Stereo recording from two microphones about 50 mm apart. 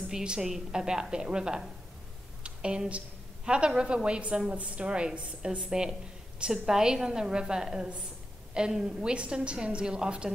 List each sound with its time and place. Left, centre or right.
0.1 s a woman's voice: centre